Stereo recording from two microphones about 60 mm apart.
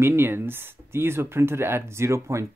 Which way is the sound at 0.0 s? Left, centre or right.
Right.